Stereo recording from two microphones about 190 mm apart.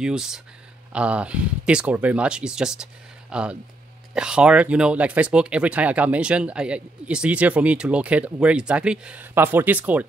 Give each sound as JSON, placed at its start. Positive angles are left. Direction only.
{"t": 0.0, "sound": "speech", "side_deg": -5}